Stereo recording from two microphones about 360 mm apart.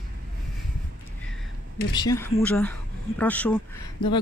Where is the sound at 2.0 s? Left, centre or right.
Centre.